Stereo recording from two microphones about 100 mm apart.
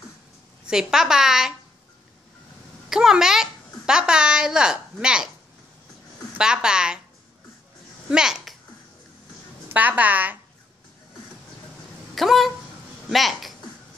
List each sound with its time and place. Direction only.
0.7 s a woman's voice: 5° right (ahead or behind)
2.9 s a child's voice: 5° right (ahead or behind)
6.3 s a woman's voice: 10° right (ahead or behind)
8.1 s a child's voice: 5° right (ahead or behind)
9.7 s a woman's voice: 15° right (ahead or behind)
12.2 s a woman's voice: centre (ahead or behind)